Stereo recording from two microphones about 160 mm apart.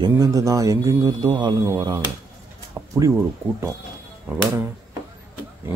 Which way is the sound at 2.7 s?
20° right (ahead or behind).